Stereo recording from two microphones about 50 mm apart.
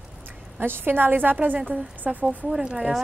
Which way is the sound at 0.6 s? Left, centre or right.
Right.